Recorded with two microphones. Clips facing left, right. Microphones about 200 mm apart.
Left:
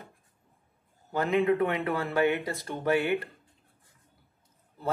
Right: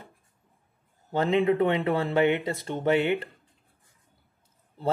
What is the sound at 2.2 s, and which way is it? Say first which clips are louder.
Speech: right 3 dB; 15° right (ahead or behind).